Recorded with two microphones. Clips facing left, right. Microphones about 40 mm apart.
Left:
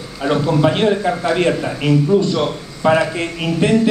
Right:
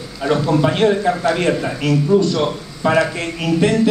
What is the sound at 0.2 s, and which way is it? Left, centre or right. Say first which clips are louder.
A man's voice: left 1 dB; centre.